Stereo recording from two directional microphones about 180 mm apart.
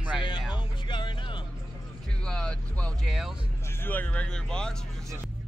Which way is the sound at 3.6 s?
10° left (ahead or behind).